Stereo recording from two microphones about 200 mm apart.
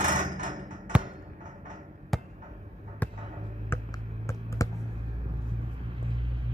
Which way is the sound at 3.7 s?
15° left (ahead or behind).